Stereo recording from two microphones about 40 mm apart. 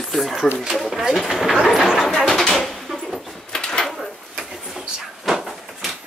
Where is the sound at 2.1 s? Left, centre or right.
Centre.